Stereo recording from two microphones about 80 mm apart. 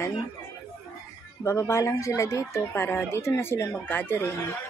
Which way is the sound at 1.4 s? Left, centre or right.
Left.